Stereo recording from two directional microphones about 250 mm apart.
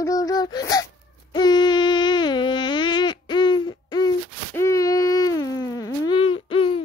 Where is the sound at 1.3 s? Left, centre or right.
Centre.